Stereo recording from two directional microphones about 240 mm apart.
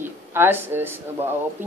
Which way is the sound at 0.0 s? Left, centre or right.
Centre.